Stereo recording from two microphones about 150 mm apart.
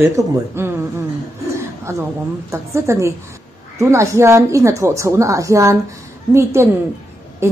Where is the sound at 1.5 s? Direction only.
20° right (ahead or behind).